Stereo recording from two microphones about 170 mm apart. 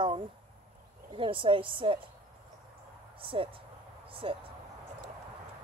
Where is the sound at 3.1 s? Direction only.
30° right (ahead or behind).